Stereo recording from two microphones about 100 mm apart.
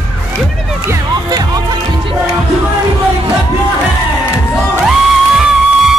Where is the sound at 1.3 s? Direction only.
40° right (ahead or behind).